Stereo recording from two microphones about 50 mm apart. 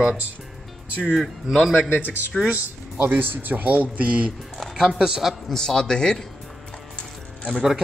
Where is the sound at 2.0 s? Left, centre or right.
Left.